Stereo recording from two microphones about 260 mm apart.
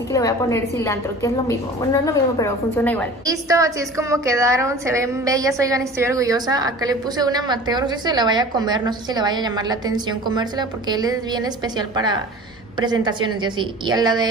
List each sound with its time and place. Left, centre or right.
0.1 s a woman's voice: centre
3.3 s a woman's voice: centre
13.4 s a woman's voice: centre